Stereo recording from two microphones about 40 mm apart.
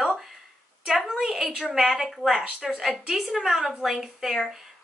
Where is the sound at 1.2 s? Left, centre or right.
Centre.